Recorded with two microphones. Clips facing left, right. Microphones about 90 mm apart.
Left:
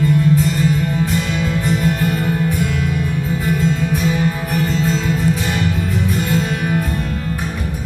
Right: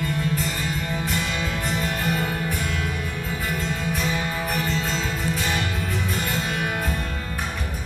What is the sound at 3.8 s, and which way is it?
Music, centre (ahead or behind).